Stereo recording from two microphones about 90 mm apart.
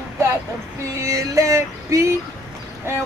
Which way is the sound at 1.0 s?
35° right (ahead or behind).